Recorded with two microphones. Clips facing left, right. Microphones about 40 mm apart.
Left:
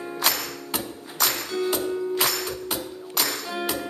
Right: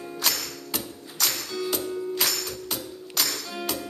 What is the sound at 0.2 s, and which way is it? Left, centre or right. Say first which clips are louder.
Music: left 3 dB; left.